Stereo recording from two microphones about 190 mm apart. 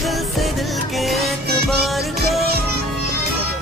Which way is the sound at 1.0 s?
Centre (ahead or behind).